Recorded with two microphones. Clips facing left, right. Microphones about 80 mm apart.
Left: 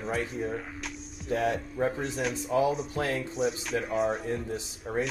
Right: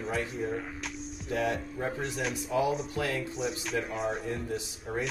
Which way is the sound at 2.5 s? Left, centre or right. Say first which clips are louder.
Left 2 dB; left.